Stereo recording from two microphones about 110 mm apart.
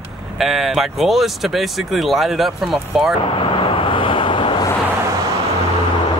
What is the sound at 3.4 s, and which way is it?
Vehicle, 50° left (ahead or behind).